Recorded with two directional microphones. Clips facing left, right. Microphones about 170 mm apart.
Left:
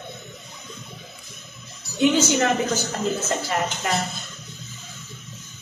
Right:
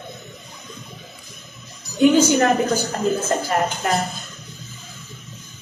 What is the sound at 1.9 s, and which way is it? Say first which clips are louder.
Speech: right 5 dB; 40° right (ahead or behind).